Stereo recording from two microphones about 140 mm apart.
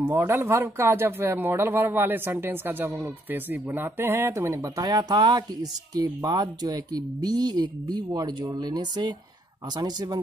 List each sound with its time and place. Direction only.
0.0 s speech: 15° right (ahead or behind)